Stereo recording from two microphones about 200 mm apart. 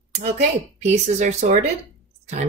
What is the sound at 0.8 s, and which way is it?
Speech, 35° right (ahead or behind).